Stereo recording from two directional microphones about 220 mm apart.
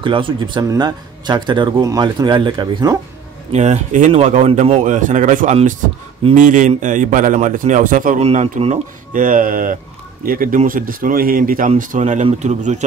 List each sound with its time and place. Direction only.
0.0 s speech: 20° right (ahead or behind)
3.5 s a man's voice: 30° right (ahead or behind)